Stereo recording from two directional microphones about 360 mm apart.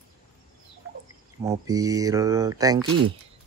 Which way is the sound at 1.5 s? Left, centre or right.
Centre.